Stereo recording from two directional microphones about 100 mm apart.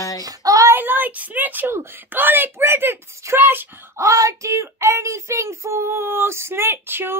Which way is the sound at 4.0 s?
35° right (ahead or behind).